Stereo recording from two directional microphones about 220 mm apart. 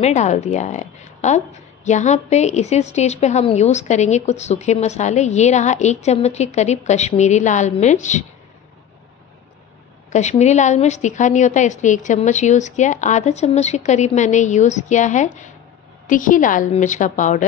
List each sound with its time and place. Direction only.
0.0 s a woman's voice: 30° left (ahead or behind)
10.1 s a woman's voice: 30° left (ahead or behind)